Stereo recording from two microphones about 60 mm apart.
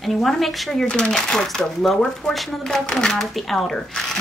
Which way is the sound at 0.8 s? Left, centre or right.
Centre.